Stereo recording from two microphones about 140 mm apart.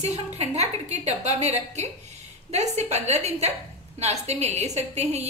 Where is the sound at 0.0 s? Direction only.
50° right (ahead or behind).